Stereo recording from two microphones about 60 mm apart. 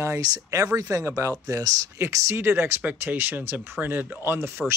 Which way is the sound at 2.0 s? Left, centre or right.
Right.